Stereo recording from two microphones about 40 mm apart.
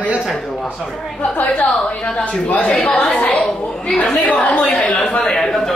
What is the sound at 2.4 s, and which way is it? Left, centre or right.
Speech, left.